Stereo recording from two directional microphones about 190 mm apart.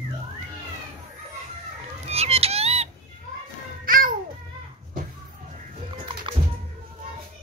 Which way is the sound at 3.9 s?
50° right (ahead or behind).